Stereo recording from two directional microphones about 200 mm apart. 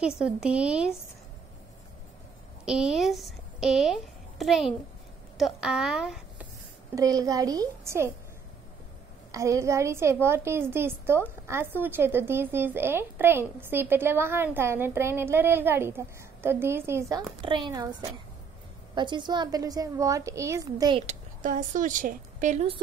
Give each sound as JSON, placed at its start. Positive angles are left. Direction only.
{"t": 0.2, "sound": "a woman's voice", "side_deg": -5}
{"t": 2.6, "sound": "a woman's voice", "side_deg": -5}
{"t": 7.0, "sound": "speech", "side_deg": -20}
{"t": 9.3, "sound": "speech", "side_deg": -15}
{"t": 17.4, "sound": "speech", "side_deg": -25}
{"t": 18.9, "sound": "speech", "side_deg": -25}
{"t": 21.1, "sound": "speech", "side_deg": -40}